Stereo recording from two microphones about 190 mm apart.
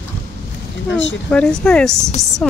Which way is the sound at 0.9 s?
70° left (ahead or behind).